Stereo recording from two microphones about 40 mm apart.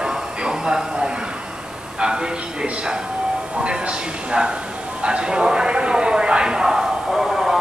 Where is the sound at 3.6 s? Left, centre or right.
Right.